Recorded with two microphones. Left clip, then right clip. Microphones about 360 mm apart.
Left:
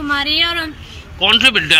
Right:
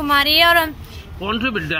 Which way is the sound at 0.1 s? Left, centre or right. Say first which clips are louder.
Right 3 dB; centre.